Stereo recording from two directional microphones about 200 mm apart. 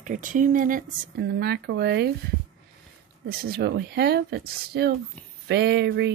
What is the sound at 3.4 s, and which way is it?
Speech, 55° right (ahead or behind).